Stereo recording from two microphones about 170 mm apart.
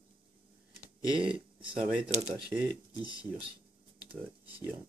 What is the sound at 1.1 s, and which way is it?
Speech, 30° right (ahead or behind).